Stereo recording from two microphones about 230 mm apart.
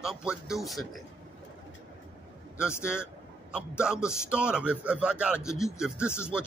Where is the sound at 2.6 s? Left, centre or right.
Centre.